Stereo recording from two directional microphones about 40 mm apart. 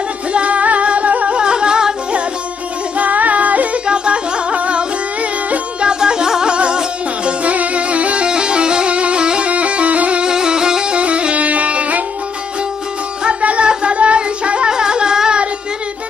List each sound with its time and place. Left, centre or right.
0.3 s music: right
1.4 s music: right
3.0 s music: right
3.8 s music: right
8.3 s music: right
10.2 s music: centre
11.0 s music: right
13.2 s music: right
13.7 s a sound: right
14.7 s wind instrument: centre